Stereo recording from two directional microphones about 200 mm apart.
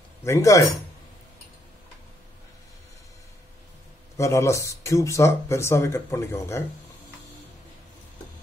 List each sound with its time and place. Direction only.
0.2 s speech: 15° left (ahead or behind)
4.2 s speech: 15° left (ahead or behind)